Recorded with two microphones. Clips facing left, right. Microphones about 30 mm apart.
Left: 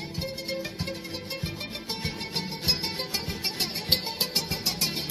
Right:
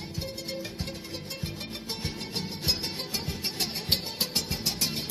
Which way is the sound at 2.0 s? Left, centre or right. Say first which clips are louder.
Left 2 dB; left.